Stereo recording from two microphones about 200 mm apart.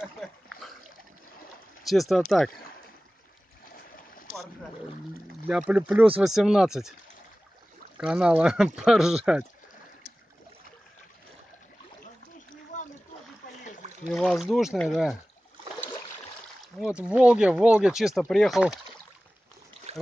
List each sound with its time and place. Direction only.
1.9 s speech: centre (ahead or behind)
5.5 s speech: 5° right (ahead or behind)
8.0 s speech: 5° right (ahead or behind)
12.7 s splash: 40° left (ahead or behind)
14.1 s speech: centre (ahead or behind)
16.6 s speech: 5° right (ahead or behind)
19.9 s boat: 30° right (ahead or behind)